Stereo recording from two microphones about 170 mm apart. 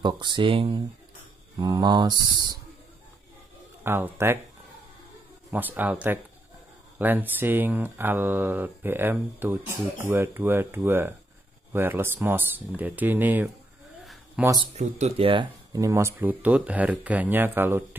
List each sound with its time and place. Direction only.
0.0 s speech: 25° right (ahead or behind)
3.8 s speech: 15° right (ahead or behind)
5.5 s speech: 10° right (ahead or behind)
14.7 s speech: 40° right (ahead or behind); by 17.8 s 10° right (ahead or behind)